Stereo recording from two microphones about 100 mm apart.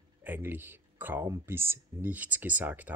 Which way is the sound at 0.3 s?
20° right (ahead or behind).